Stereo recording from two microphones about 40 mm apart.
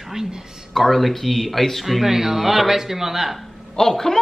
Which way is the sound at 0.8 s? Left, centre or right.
Centre.